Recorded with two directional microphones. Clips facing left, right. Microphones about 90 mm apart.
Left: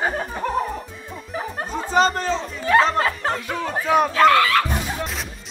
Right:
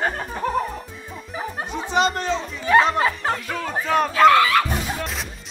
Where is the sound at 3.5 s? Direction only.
5° left (ahead or behind).